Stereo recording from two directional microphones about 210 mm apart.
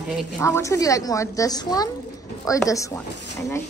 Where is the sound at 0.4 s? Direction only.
15° left (ahead or behind).